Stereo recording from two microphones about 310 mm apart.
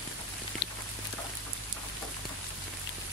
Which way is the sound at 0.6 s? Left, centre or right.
Left.